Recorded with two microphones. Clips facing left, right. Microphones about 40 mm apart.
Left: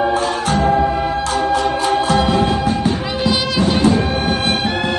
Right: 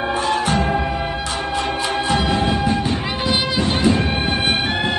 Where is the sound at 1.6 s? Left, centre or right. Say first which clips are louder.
Left 5 dB; right.